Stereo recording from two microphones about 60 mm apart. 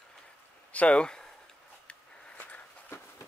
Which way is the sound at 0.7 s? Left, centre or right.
Left.